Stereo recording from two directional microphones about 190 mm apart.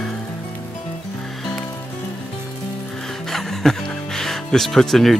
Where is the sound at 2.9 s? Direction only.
Centre (ahead or behind).